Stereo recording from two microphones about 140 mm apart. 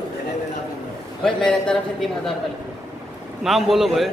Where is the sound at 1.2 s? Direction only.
5° left (ahead or behind).